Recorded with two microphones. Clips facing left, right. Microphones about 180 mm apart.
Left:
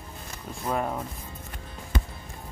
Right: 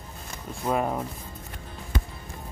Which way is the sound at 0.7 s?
10° right (ahead or behind).